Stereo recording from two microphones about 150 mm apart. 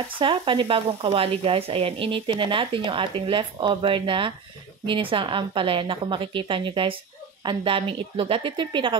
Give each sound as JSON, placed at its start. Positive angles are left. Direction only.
{"t": 0.2, "sound": "speech", "side_deg": -35}